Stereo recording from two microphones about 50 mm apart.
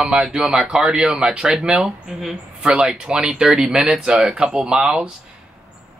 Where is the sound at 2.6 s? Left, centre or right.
Centre.